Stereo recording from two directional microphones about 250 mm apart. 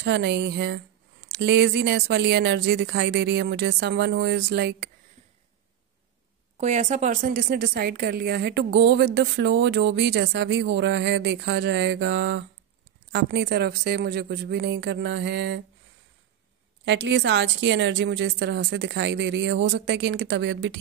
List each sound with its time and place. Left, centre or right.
0.0 s a woman's voice: right
6.6 s a woman's voice: right
16.8 s a woman's voice: right